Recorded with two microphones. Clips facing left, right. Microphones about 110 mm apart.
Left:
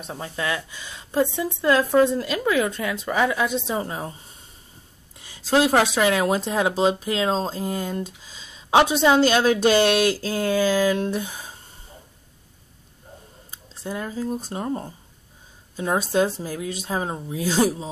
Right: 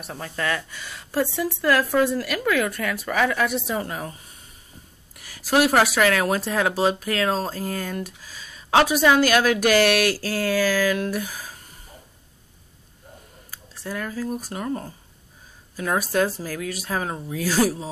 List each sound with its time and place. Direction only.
0.0 s speech: 15° left (ahead or behind)
13.5 s speech: 20° left (ahead or behind)